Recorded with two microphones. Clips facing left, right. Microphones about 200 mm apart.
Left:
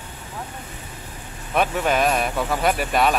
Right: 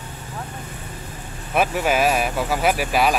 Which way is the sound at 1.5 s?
5° right (ahead or behind).